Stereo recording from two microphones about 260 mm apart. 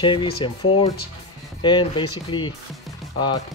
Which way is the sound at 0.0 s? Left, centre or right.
Centre.